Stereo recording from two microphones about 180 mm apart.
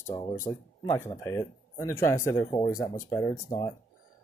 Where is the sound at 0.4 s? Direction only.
15° left (ahead or behind).